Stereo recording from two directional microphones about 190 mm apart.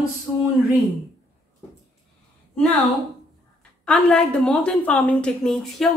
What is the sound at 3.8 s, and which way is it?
A woman's voice, 5° left (ahead or behind).